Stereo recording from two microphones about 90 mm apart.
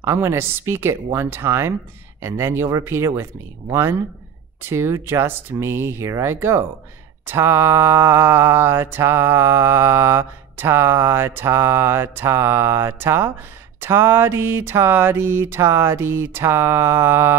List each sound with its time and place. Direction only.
0.0 s mantra: 30° right (ahead or behind)
4.6 s mantra: 30° right (ahead or behind)